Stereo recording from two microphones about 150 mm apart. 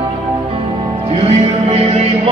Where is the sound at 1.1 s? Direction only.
45° right (ahead or behind).